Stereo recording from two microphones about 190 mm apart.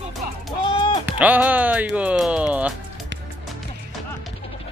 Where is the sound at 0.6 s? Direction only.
25° left (ahead or behind).